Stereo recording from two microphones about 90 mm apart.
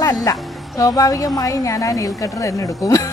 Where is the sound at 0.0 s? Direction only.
40° left (ahead or behind).